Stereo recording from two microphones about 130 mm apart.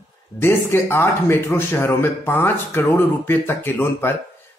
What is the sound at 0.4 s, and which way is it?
A man's voice, 20° left (ahead or behind).